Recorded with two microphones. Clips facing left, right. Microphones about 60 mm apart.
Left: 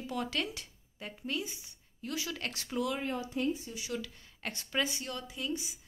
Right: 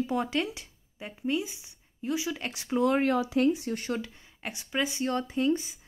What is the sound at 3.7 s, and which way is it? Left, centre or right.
Speech, right.